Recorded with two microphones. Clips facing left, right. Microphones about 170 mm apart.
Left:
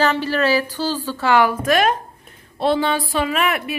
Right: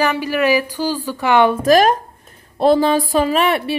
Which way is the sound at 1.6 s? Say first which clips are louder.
Right 5 dB; 40° right (ahead or behind).